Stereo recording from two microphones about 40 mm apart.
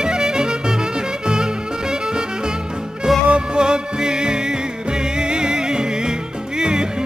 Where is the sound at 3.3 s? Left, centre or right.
Right.